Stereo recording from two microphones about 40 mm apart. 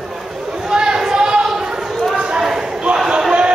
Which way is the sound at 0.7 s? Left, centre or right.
Centre.